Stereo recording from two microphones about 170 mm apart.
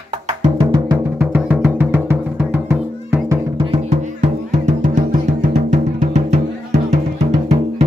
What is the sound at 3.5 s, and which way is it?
Music, 30° right (ahead or behind).